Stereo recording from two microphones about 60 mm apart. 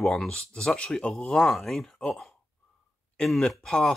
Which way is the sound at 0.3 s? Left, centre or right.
Centre.